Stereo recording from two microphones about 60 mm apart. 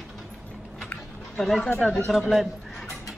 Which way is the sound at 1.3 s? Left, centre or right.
Centre.